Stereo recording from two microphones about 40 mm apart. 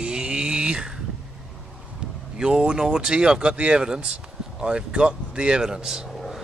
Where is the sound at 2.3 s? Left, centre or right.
Centre.